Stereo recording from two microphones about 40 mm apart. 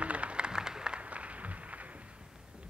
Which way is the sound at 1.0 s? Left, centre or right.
Right.